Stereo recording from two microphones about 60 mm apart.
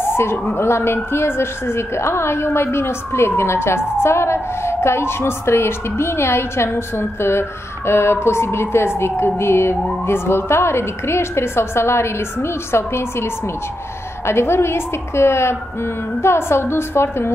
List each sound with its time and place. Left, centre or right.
0.1 s emergency vehicle: left
0.6 s a woman's voice: left